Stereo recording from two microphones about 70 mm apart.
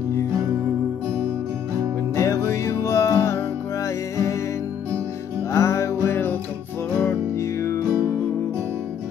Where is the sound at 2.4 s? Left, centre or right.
Left.